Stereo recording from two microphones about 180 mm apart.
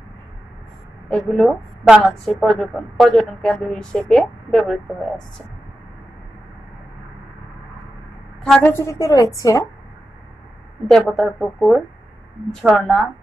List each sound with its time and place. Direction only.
1.1 s a woman's voice: centre (ahead or behind)
8.5 s a woman's voice: 10° left (ahead or behind)
10.9 s a woman's voice: centre (ahead or behind)